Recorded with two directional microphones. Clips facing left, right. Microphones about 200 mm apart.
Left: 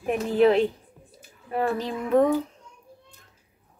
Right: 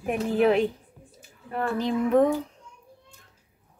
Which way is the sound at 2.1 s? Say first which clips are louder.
Left 1 dB; 5° left (ahead or behind).